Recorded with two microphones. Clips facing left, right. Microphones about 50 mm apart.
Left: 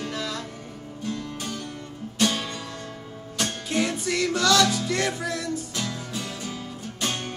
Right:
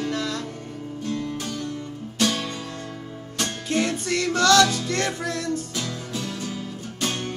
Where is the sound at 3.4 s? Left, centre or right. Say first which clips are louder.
Right 1 dB; centre.